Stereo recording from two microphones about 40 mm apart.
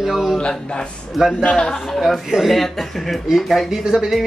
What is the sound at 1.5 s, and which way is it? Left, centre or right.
Speech, centre.